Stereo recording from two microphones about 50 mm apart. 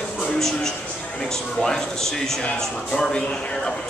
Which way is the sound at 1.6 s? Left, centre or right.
Centre.